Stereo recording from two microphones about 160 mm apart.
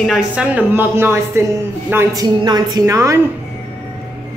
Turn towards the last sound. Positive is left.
turn(degrees=-20)  # may be behind; listen again after turning